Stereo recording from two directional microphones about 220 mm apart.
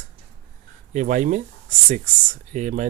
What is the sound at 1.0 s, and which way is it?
Speech, 35° right (ahead or behind).